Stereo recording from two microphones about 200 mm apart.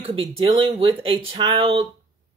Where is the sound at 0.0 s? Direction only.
25° right (ahead or behind).